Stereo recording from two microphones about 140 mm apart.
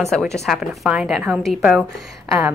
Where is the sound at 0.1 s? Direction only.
Centre (ahead or behind).